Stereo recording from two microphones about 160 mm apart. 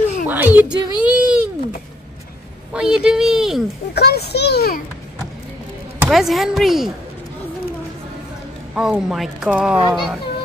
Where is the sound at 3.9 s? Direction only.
85° left.